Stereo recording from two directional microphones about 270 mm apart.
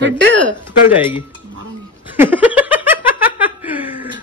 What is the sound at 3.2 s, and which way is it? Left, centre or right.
Laughter, centre.